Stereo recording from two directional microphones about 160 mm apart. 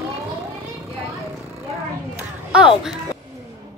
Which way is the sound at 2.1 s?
5° right (ahead or behind).